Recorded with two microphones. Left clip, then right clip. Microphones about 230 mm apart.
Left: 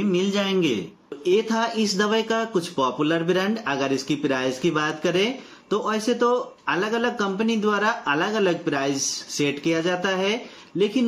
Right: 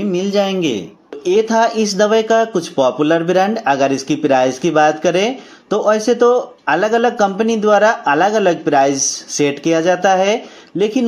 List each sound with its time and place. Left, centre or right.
0.1 s a man's voice: centre